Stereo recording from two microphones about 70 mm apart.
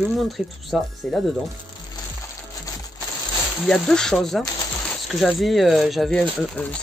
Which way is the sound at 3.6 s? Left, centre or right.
Centre.